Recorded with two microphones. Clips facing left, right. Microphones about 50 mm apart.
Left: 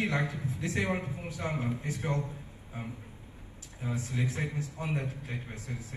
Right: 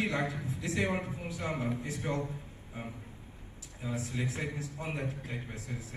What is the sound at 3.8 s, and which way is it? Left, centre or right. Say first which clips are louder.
A man's voice: left 2 dB; left.